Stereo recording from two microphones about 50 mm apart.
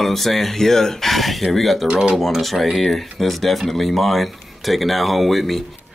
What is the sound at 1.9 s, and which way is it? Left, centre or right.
Speech, centre.